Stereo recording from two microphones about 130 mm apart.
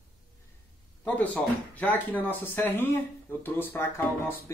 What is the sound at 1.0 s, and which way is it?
Speech, 15° left (ahead or behind).